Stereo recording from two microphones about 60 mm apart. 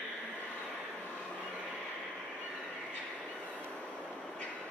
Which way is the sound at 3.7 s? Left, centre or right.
Left.